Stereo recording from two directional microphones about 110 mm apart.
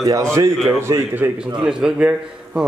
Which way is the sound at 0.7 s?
20° right (ahead or behind).